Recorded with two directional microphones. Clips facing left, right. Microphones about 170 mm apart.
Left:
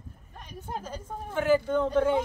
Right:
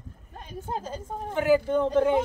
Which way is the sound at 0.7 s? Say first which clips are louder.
Right 3 dB; 25° right (ahead or behind).